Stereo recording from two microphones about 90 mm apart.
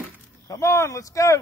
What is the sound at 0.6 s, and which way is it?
Speech, 30° left (ahead or behind).